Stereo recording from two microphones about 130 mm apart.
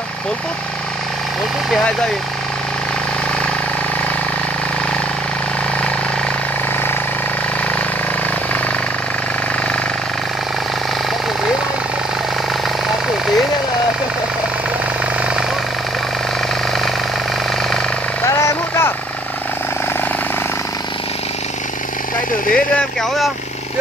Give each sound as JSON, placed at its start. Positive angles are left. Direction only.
{"t": 18.3, "sound": "vehicle", "side_deg": 20}
{"t": 22.5, "sound": "vehicle", "side_deg": 5}